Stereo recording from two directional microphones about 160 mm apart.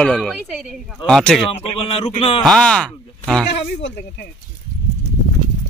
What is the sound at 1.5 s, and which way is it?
Speech, 40° left (ahead or behind).